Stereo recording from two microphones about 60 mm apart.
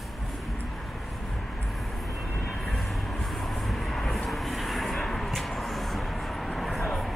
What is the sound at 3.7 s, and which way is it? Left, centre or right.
Vehicle, centre.